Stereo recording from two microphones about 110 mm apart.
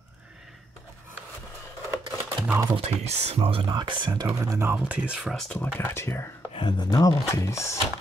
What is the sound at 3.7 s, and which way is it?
Speech, 45° right (ahead or behind).